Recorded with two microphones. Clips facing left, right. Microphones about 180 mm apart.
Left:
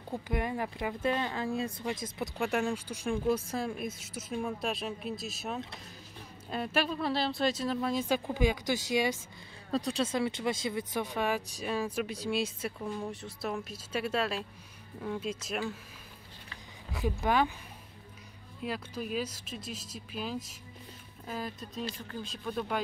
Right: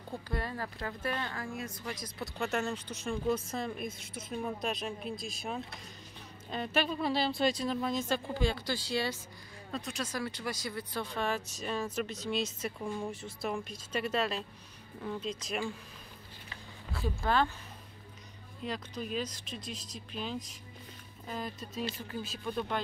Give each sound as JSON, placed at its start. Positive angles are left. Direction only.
{"t": 0.1, "sound": "speech", "side_deg": 15}
{"t": 2.1, "sound": "speech", "side_deg": 15}
{"t": 9.7, "sound": "speech", "side_deg": 35}
{"t": 16.9, "sound": "speech", "side_deg": 15}
{"t": 18.6, "sound": "speech", "side_deg": 5}